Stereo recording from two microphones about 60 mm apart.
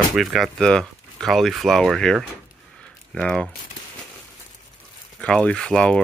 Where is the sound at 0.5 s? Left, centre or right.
Centre.